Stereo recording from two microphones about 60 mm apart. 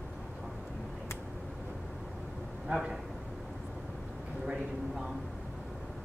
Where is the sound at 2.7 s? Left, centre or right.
Centre.